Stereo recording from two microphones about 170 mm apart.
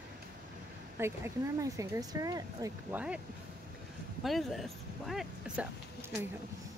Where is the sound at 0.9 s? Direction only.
15° right (ahead or behind).